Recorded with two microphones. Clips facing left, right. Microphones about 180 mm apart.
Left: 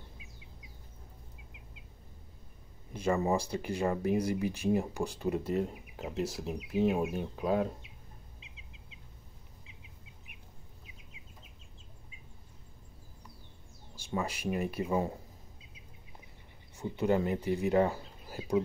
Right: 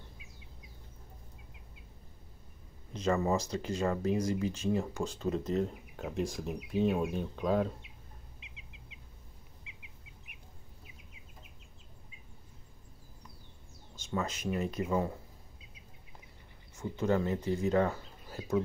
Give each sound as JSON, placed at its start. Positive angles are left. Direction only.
{"t": 2.9, "sound": "speech", "side_deg": 10}
{"t": 14.1, "sound": "speech", "side_deg": 10}
{"t": 16.8, "sound": "speech", "side_deg": 15}